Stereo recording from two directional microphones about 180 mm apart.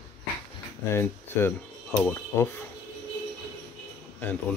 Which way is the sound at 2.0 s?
15° left (ahead or behind).